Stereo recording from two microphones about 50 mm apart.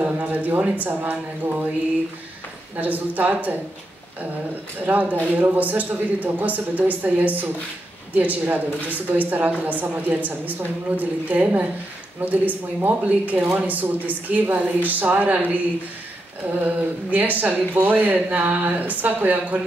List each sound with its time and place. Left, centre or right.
0.0 s speech: right
2.7 s speech: right
4.8 s speech: right
16.6 s speech: right